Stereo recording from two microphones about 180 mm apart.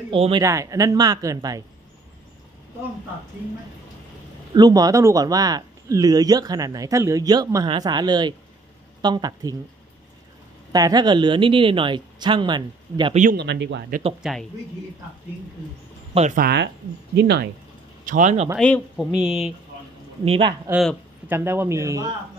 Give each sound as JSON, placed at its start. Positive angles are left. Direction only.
{"t": 0.1, "sound": "speech", "side_deg": -30}
{"t": 0.4, "sound": "speech", "side_deg": -15}
{"t": 4.6, "sound": "speech", "side_deg": -20}
{"t": 10.7, "sound": "speech", "side_deg": -20}
{"t": 13.1, "sound": "a man's voice", "side_deg": -45}
{"t": 13.4, "sound": "speech", "side_deg": -75}
{"t": 14.2, "sound": "speech", "side_deg": 0}
{"t": 16.2, "sound": "a man's voice", "side_deg": -40}
{"t": 16.4, "sound": "speech", "side_deg": -70}
{"t": 18.0, "sound": "speech", "side_deg": -45}
{"t": 18.6, "sound": "speech", "side_deg": 5}
{"t": 20.2, "sound": "speech", "side_deg": -30}
{"t": 21.3, "sound": "speech", "side_deg": -10}